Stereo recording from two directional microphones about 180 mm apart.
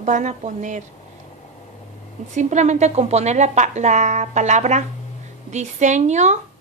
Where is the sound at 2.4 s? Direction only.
40° right (ahead or behind).